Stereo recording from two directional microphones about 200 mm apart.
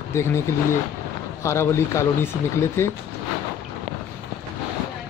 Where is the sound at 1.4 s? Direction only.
15° left (ahead or behind).